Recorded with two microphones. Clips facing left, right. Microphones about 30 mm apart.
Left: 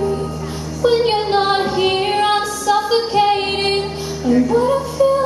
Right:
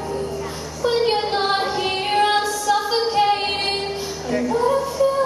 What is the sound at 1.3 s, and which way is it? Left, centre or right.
Music, centre.